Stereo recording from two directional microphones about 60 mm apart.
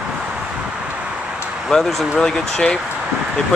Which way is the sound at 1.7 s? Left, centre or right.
Centre.